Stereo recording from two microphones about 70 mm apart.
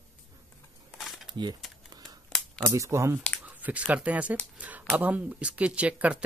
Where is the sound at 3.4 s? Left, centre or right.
Right.